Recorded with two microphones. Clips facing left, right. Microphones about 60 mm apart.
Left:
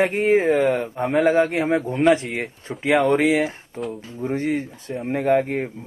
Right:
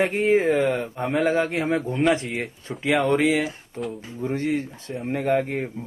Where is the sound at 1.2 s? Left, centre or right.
Left.